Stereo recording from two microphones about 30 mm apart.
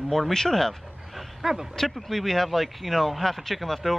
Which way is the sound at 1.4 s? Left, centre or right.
Centre.